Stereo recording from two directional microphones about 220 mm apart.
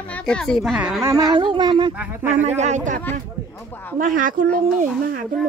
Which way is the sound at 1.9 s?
5° right (ahead or behind).